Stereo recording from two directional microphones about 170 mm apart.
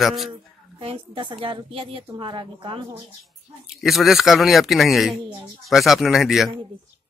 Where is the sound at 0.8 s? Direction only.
30° right (ahead or behind).